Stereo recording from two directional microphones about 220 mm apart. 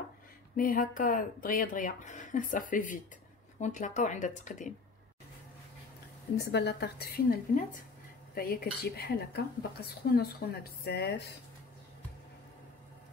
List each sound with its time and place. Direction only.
0.6 s speech: 40° left (ahead or behind)
6.3 s speech: 50° left (ahead or behind)